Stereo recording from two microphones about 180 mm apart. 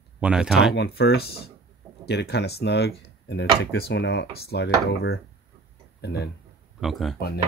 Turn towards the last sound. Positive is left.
turn(degrees=60)  # may be behind; listen again after turning